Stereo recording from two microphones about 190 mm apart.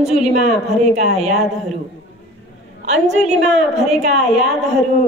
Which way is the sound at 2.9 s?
35° right (ahead or behind).